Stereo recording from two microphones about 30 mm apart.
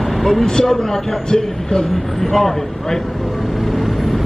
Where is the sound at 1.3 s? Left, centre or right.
Left.